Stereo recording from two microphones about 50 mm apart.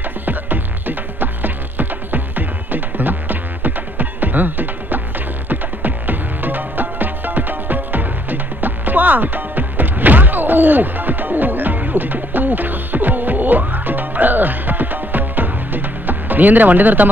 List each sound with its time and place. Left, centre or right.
0.2 s music: right